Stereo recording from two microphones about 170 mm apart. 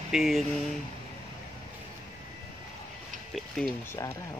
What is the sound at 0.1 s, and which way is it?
Speech, centre (ahead or behind).